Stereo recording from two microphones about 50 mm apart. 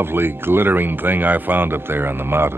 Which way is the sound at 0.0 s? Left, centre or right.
Right.